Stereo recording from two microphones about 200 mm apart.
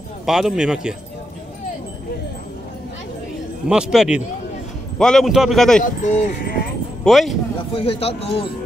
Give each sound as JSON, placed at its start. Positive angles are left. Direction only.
{"t": 0.2, "sound": "a man's voice", "side_deg": 0}
{"t": 3.6, "sound": "a man's voice", "side_deg": -5}
{"t": 5.8, "sound": "speech", "side_deg": 40}
{"t": 7.1, "sound": "a man's voice", "side_deg": 0}
{"t": 7.7, "sound": "speech", "side_deg": 25}